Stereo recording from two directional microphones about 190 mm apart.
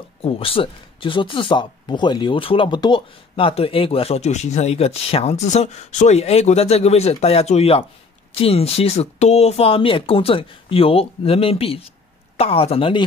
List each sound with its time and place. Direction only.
0.2 s speech: 30° left (ahead or behind)